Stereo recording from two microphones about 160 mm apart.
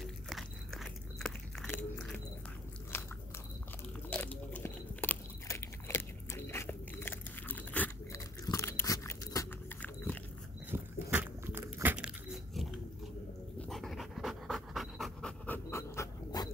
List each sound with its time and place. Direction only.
0.0 s biting: centre (ahead or behind); by 9.8 s 20° left (ahead or behind)
10.7 s biting: 10° right (ahead or behind)
13.6 s pant: centre (ahead or behind)
15.4 s dog: 15° left (ahead or behind)